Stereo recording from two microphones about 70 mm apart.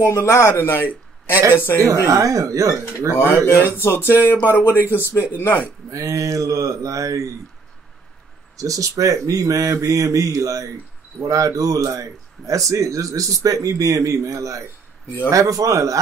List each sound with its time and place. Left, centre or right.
0.0 s a man's voice: left
2.0 s speech: right
3.3 s speech: left
3.7 s a man's voice: left
5.9 s speech: right
8.5 s speech: right